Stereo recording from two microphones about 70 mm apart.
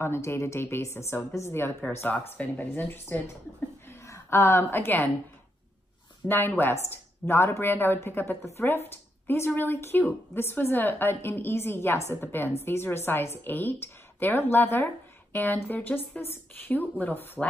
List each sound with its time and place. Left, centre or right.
0.0 s a woman's voice: left
3.9 s a woman's voice: left
6.2 s a woman's voice: left